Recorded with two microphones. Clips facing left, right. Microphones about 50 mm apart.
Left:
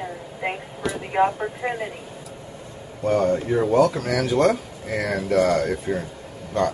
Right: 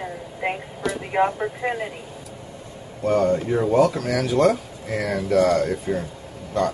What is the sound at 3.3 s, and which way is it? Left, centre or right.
Speech, centre.